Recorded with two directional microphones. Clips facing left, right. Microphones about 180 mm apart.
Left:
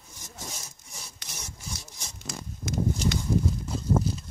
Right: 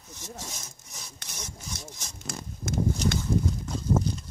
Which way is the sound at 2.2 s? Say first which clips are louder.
Right 1 dB; 50° right (ahead or behind).